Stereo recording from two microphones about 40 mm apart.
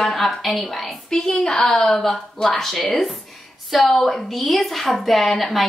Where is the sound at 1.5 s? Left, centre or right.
Left.